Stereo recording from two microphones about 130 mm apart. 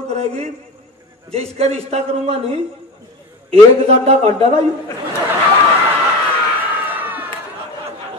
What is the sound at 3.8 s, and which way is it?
Speech, 50° right (ahead or behind).